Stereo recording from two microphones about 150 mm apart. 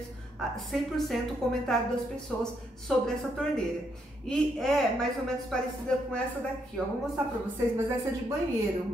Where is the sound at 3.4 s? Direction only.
5° left (ahead or behind).